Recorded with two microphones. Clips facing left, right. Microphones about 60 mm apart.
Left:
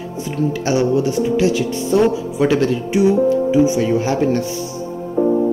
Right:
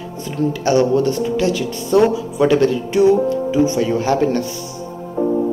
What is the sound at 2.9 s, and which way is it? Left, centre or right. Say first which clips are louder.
Speech: even; centre.